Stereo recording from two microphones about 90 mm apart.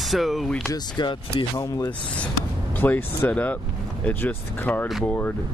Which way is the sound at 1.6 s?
40° left (ahead or behind).